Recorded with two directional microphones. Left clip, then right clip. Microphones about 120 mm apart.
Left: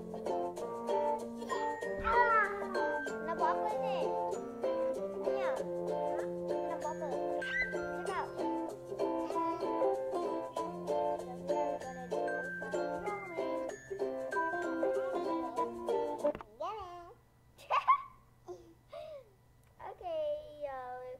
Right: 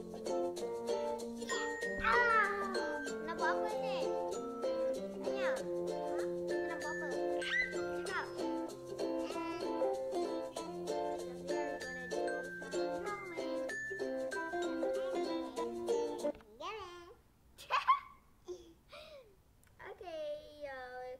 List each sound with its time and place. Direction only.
0.1 s music: centre (ahead or behind)
2.3 s music: 25° right (ahead or behind)
2.7 s music: centre (ahead or behind)
7.3 s music: 15° right (ahead or behind)
7.7 s music: centre (ahead or behind)
17.6 s a sound: 5° left (ahead or behind)
20.1 s a sound: 5° left (ahead or behind)